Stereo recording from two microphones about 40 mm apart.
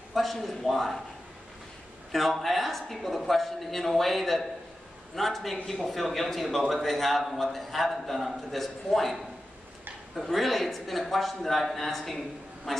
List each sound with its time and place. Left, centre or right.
0.1 s speech: centre
2.1 s speech: centre